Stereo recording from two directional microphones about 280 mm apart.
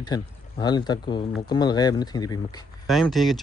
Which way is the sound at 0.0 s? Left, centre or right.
Centre.